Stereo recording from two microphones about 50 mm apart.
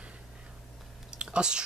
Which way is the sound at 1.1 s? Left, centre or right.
Centre.